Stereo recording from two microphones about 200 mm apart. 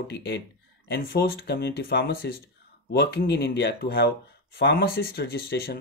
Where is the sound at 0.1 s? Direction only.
55° left (ahead or behind).